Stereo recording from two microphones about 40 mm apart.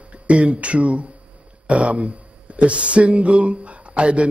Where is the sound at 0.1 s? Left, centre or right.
Right.